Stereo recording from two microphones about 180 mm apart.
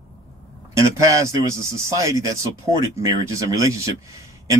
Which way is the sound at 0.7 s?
20° right (ahead or behind).